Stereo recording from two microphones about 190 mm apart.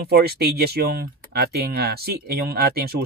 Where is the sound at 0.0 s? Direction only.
55° right (ahead or behind).